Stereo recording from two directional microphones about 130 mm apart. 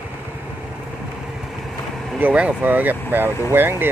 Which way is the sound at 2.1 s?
10° right (ahead or behind).